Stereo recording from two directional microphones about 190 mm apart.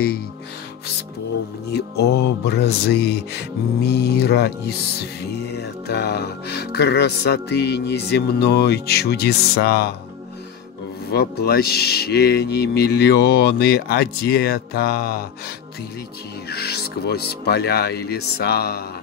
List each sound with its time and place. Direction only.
1.7 s music: 55° left (ahead or behind)
11.1 s music: 55° left (ahead or behind)
16.4 s music: 60° left (ahead or behind)